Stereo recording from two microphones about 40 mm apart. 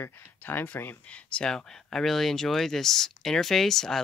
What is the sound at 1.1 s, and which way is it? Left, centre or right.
Speech, left.